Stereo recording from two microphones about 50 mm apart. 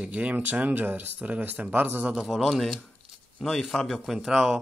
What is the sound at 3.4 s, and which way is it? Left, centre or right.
Speech, centre.